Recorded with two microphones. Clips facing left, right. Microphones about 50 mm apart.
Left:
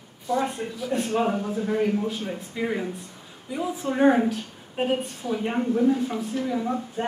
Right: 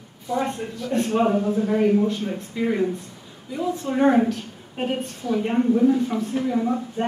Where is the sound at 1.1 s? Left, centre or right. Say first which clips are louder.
Right 6 dB; centre.